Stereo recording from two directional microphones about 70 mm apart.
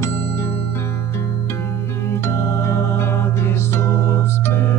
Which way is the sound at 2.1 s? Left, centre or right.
Left.